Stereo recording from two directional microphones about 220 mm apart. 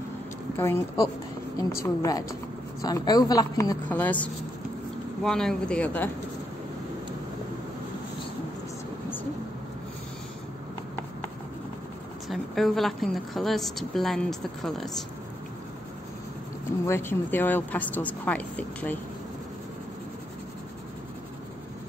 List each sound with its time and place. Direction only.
0.6 s a woman's voice: 15° left (ahead or behind)
12.3 s a woman's voice: centre (ahead or behind)
16.8 s a woman's voice: 10° left (ahead or behind)